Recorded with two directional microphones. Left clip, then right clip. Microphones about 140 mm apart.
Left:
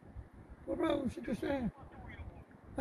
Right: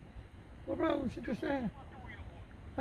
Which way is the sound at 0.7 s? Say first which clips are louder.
Right 1 dB; 25° right (ahead or behind).